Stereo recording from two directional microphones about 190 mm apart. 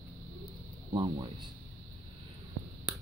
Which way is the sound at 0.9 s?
20° right (ahead or behind).